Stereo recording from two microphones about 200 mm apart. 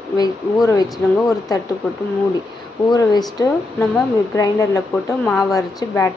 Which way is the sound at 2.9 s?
20° left (ahead or behind).